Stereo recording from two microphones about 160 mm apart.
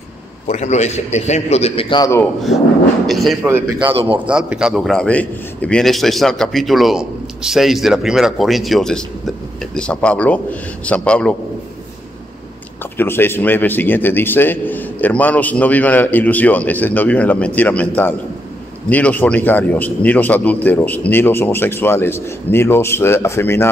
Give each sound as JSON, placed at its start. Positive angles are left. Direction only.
{"t": 0.5, "sound": "a man's voice", "side_deg": 45}
{"t": 3.1, "sound": "speech", "side_deg": 0}
{"t": 3.4, "sound": "a man's voice", "side_deg": -15}
{"t": 12.9, "sound": "a man's voice", "side_deg": 15}